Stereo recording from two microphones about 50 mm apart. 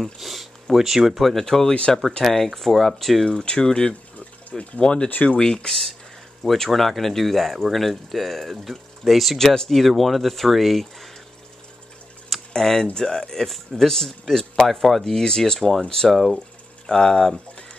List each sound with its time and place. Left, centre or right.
0.0 s speech: centre
1.2 s speech: centre
3.3 s speech: centre
5.4 s speech: centre
12.3 s a sound: centre
12.9 s speech: centre